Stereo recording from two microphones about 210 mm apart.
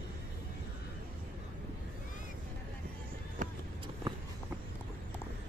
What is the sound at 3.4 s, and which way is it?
Vehicle, 35° right (ahead or behind).